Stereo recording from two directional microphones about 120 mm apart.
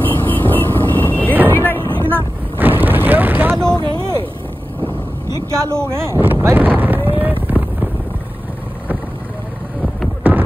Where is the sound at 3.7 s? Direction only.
35° left (ahead or behind).